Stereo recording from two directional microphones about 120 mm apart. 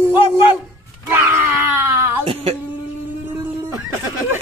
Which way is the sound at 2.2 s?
55° right (ahead or behind).